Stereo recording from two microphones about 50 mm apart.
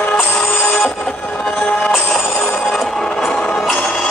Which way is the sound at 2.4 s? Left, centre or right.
Left.